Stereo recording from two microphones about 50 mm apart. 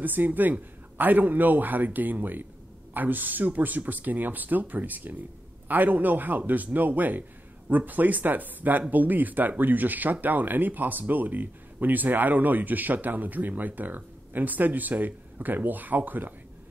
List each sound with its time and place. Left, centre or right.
0.0 s speech: right